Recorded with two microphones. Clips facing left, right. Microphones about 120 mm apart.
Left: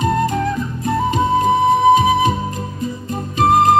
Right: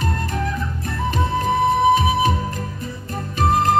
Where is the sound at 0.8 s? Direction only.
20° left (ahead or behind).